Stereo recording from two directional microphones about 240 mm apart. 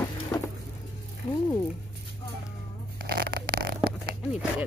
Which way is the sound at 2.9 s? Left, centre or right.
Right.